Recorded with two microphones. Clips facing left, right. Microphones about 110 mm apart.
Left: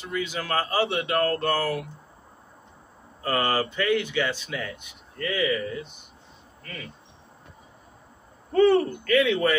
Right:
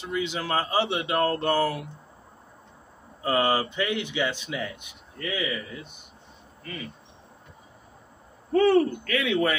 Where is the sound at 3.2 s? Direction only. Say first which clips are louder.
Right 1 dB; 15° right (ahead or behind).